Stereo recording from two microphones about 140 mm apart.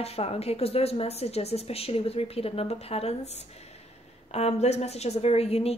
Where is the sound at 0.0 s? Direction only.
45° left (ahead or behind).